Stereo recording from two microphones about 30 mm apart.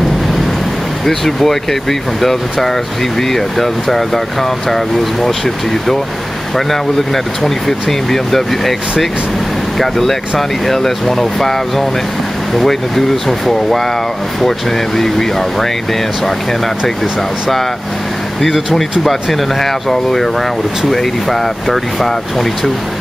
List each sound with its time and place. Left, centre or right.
1.0 s speech: centre
7.4 s speech: centre
9.8 s speech: centre
15.0 s speech: centre
19.3 s speech: centre